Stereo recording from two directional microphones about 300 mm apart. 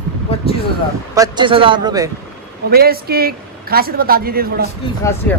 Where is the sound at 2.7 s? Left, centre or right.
Right.